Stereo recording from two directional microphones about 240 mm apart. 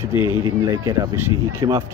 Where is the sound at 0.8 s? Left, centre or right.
Centre.